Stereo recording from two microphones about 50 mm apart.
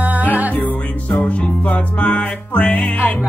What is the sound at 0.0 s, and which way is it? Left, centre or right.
Music, right.